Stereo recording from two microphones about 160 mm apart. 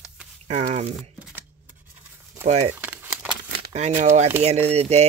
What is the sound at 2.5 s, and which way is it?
Speech, 45° right (ahead or behind).